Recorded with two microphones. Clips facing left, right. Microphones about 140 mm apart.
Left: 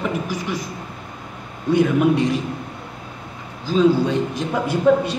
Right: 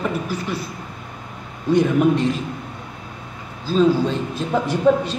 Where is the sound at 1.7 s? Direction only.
10° left (ahead or behind).